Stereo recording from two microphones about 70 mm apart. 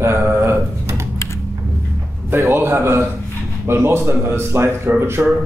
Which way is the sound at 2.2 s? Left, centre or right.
Right.